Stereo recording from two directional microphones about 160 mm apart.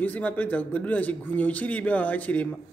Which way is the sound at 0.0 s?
10° left (ahead or behind).